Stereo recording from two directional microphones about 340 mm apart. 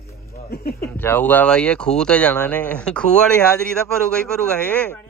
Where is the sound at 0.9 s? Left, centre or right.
Centre.